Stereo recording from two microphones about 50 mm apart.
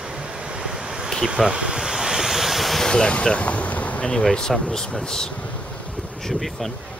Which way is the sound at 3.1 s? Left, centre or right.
Left.